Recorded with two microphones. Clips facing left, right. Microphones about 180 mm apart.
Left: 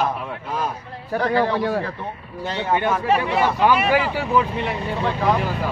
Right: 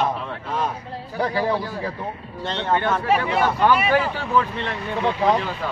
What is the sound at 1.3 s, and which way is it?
Speech, 65° left (ahead or behind).